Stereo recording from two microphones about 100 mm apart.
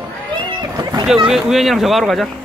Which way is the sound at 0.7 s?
40° right (ahead or behind).